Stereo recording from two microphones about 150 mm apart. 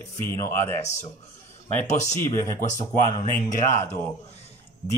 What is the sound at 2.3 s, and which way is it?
Speech, 50° left (ahead or behind).